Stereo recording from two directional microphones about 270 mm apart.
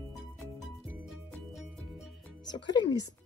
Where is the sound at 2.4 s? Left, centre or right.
Centre.